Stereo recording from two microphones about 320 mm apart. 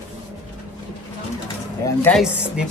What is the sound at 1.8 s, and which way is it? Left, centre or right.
Speech, centre.